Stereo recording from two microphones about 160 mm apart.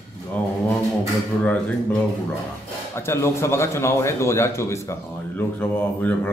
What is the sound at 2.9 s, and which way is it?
Speech, 15° left (ahead or behind).